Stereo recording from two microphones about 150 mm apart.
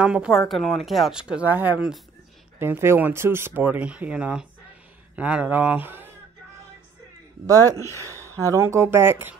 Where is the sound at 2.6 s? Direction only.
15° right (ahead or behind).